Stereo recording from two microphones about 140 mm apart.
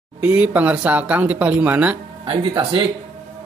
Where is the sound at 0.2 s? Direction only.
10° right (ahead or behind).